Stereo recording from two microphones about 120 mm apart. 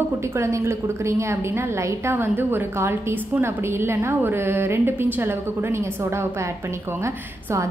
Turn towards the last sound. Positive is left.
turn(degrees=-25)  # may be behind; listen again after turning